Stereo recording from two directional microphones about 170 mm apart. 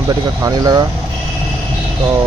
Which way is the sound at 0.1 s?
20° right (ahead or behind).